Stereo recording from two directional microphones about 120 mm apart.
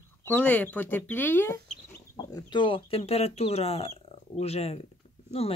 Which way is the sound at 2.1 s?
40° left (ahead or behind).